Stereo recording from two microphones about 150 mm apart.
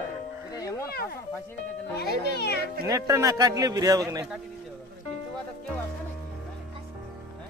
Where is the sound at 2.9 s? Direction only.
25° right (ahead or behind).